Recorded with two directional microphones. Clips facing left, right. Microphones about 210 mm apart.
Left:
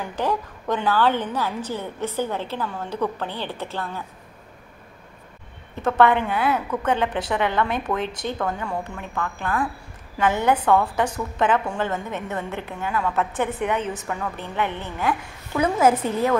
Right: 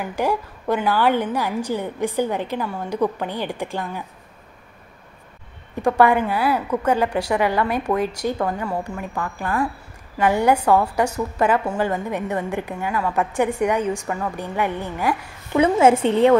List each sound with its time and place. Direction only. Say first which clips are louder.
0.0 s a woman's voice: right 2 dB; 10° right (ahead or behind)
5.8 s a woman's voice: right 2 dB; 10° right (ahead or behind)
15.6 s a woman's voice: right 4 dB; 25° right (ahead or behind)